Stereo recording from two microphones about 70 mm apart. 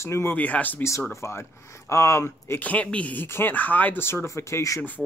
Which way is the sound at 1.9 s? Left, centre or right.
Left.